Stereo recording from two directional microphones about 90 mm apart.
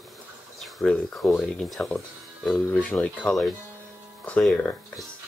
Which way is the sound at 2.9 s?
20° left (ahead or behind).